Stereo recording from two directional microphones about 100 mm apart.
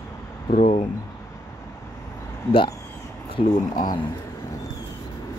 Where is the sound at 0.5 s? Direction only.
90° left.